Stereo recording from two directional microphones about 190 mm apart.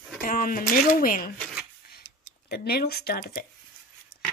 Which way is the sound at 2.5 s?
55° left (ahead or behind).